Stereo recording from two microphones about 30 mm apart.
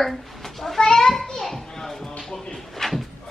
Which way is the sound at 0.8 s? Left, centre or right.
Centre.